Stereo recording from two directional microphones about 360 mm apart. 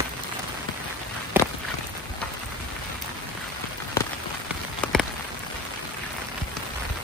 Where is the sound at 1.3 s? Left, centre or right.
Centre.